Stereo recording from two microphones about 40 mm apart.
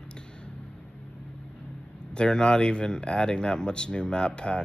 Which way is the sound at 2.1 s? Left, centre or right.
Left.